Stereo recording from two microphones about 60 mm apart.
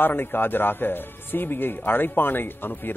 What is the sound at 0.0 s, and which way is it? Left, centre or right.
A man's voice, left.